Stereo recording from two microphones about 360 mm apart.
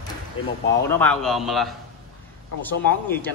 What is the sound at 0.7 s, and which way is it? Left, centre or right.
Fowl, centre.